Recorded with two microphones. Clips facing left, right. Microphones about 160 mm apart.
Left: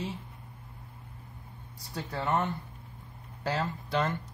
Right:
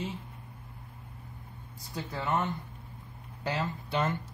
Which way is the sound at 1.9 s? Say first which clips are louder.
Left 1 dB; 35° left (ahead or behind).